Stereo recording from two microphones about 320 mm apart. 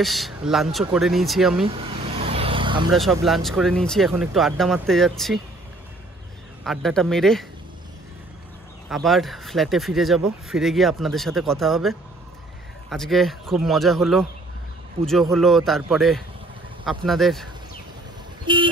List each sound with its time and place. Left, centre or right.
0.0 s speech: centre
1.7 s vehicle: centre
2.9 s speech: centre
6.6 s speech: centre
8.8 s speech: centre
18.4 s vehicle: centre